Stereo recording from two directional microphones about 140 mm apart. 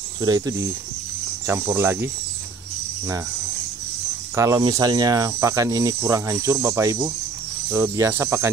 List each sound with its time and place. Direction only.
0.2 s speech: 25° right (ahead or behind)
4.4 s speech: 25° right (ahead or behind)